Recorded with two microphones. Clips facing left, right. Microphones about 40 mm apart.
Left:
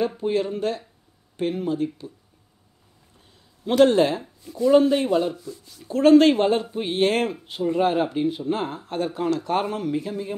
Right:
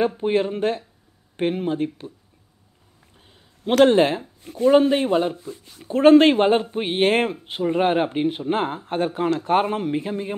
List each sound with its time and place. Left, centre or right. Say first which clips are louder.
0.2 s speech: right 3 dB; right
3.8 s speech: right 1 dB; right